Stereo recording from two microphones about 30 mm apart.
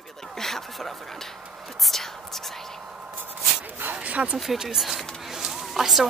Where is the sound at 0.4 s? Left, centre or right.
Centre.